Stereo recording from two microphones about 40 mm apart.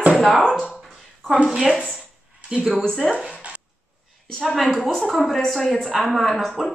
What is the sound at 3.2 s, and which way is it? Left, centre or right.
Zipper, right.